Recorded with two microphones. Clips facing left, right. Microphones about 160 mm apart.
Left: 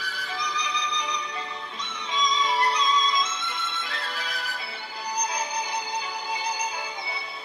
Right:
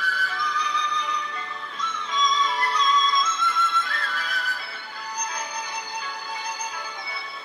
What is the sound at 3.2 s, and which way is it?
Music, 25° left (ahead or behind).